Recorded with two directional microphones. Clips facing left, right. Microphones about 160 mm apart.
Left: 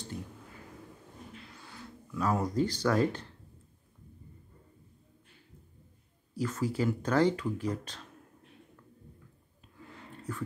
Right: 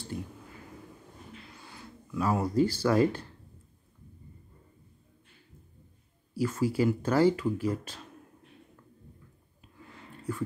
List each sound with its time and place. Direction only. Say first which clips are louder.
1.6 s speech: even; 10° right (ahead or behind)
6.3 s speech: right 4 dB; 10° right (ahead or behind)
10.3 s speech: right 5 dB; 10° right (ahead or behind)